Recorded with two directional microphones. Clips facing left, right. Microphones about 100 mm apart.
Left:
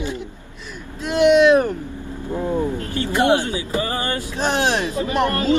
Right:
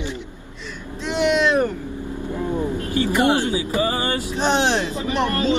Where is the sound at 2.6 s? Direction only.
20° right (ahead or behind).